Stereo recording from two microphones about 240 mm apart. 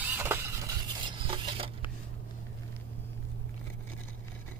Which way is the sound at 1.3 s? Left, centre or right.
Right.